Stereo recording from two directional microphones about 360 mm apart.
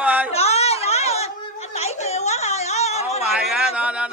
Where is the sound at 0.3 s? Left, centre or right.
Centre.